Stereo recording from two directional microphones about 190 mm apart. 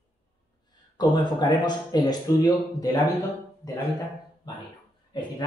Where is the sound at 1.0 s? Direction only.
20° left (ahead or behind).